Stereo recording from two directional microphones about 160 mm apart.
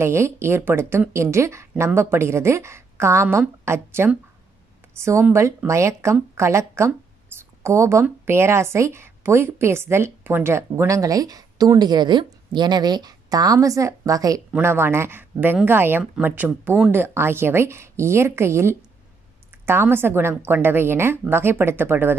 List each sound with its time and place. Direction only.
0.0 s speech: 15° right (ahead or behind)